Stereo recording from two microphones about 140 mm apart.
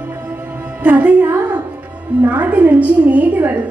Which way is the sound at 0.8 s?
10° right (ahead or behind).